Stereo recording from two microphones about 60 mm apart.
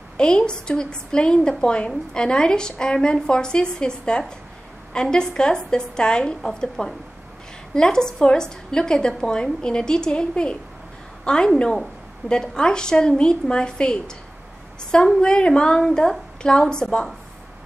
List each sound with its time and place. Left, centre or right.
0.2 s a woman's voice: centre
15.1 s a woman's voice: centre